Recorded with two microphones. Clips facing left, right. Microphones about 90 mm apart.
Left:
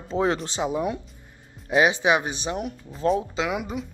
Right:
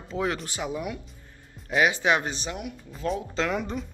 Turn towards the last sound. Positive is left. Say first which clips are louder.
# left 1 dB
turn(degrees=5)  # may be behind; listen again after turning